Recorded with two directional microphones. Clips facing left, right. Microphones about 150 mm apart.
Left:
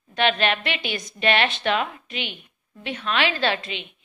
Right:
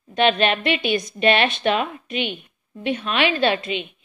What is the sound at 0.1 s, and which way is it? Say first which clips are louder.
Speech: right 3 dB; 20° right (ahead or behind).